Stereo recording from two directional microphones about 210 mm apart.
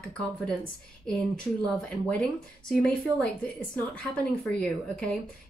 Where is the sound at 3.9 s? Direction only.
5° left (ahead or behind).